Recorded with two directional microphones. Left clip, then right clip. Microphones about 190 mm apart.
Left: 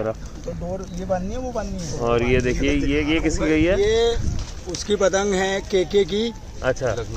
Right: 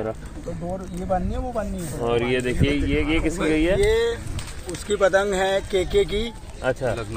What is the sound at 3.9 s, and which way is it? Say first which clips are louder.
Speech: left 2 dB; 40° left (ahead or behind).